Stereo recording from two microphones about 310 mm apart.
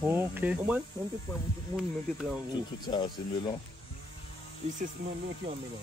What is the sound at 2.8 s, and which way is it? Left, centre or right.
Speech, centre.